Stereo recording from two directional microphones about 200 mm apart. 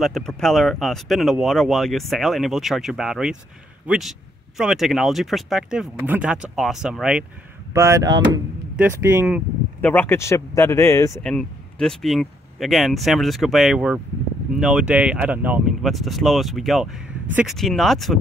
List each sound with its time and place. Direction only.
0.0 s speech: centre (ahead or behind)
7.7 s speech: 15° right (ahead or behind)
8.7 s speech: 10° right (ahead or behind)
9.8 s speech: 10° left (ahead or behind)
11.2 s speech: 5° left (ahead or behind)